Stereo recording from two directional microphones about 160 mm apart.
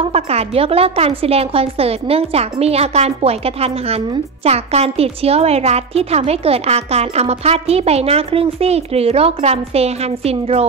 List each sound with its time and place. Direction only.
0.0 s a woman's voice: 40° right (ahead or behind)